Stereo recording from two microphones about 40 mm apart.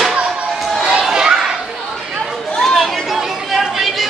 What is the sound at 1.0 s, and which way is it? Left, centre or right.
Children playing, centre.